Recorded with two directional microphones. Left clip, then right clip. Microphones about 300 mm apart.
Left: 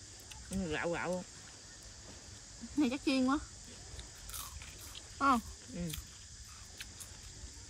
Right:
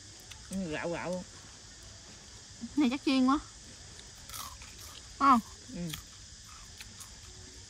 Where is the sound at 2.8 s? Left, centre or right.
Right.